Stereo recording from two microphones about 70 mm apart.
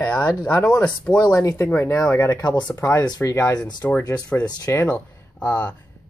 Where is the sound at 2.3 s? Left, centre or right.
Left.